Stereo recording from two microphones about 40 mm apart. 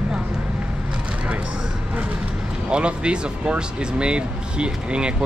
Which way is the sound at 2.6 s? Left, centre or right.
Right.